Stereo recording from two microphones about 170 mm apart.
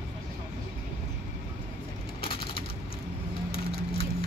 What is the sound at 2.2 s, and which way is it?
Crushing, 30° left (ahead or behind).